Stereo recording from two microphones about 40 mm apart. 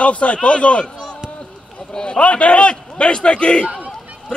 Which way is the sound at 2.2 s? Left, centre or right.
Left.